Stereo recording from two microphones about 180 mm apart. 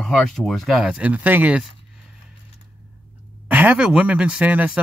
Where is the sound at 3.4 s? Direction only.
10° right (ahead or behind).